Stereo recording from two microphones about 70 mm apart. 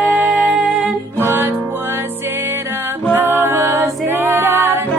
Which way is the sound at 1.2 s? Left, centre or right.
Right.